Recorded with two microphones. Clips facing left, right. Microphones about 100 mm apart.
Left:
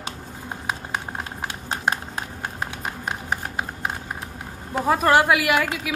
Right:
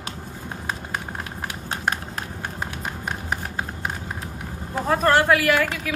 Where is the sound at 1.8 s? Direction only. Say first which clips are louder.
Left 1 dB; 20° left (ahead or behind).